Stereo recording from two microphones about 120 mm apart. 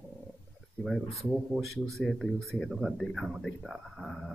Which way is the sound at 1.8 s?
Centre (ahead or behind).